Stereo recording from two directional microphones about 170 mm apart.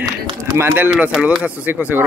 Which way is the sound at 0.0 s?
20° right (ahead or behind).